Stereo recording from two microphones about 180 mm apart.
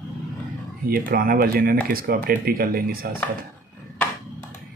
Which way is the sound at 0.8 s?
55° right (ahead or behind).